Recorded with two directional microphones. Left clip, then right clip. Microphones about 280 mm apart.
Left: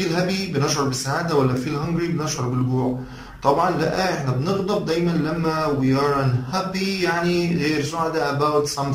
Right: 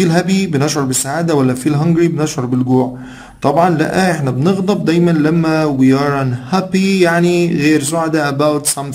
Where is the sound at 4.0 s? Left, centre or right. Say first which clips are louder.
Right 8 dB; right.